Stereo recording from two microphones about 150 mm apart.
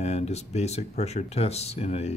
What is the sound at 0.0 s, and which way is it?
Speech, 45° left (ahead or behind).